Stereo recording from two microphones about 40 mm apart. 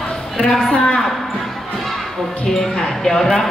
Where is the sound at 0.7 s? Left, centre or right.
Left.